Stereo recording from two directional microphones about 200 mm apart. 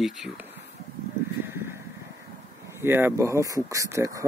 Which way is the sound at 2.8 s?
10° right (ahead or behind).